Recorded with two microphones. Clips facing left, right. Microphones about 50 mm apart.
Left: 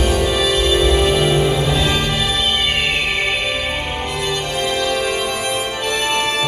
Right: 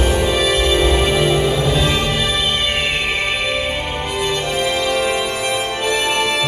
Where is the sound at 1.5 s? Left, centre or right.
Centre.